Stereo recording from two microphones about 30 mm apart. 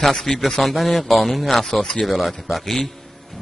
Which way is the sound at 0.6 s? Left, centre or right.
Centre.